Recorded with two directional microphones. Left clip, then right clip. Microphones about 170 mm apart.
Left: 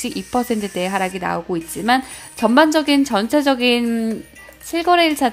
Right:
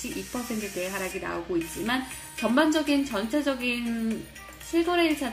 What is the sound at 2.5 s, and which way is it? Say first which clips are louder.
A woman's voice: left 9 dB; 70° left (ahead or behind).